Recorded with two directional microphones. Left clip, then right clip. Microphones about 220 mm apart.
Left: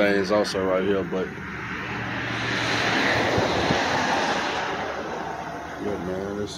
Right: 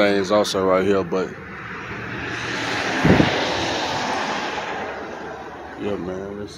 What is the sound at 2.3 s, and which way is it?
Vehicle, 50° right (ahead or behind).